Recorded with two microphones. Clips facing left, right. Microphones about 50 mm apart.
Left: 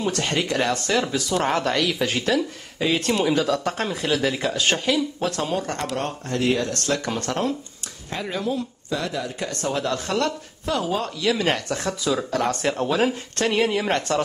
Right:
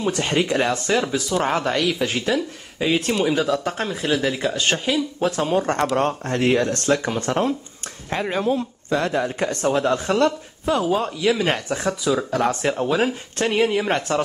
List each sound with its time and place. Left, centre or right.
0.0 s speech: centre
5.6 s speech: right
8.1 s speech: right
9.8 s speech: right